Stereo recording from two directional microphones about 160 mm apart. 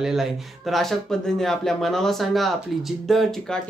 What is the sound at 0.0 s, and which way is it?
Speech, centre (ahead or behind).